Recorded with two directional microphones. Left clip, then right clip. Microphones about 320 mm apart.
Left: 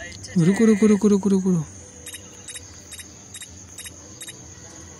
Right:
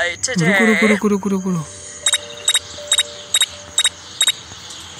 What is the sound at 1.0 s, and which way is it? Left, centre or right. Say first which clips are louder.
Speech: right 1 dB; centre.